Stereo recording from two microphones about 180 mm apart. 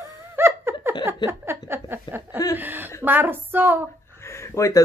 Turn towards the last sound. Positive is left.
turn(degrees=15)  # may be behind; listen again after turning